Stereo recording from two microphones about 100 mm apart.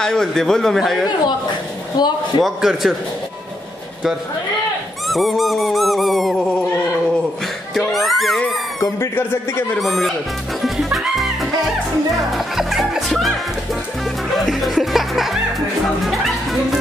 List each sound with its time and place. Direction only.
0.0 s dog: 5° left (ahead or behind)
2.0 s a man's voice: 45° left (ahead or behind)
2.4 s dog: 5° right (ahead or behind)
5.0 s dog: centre (ahead or behind)
7.7 s a sound: centre (ahead or behind)
9.0 s speech: 25° left (ahead or behind)
9.8 s dog: centre (ahead or behind)
10.6 s music: centre (ahead or behind)